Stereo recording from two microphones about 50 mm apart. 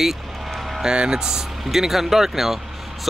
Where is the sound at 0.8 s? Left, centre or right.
Centre.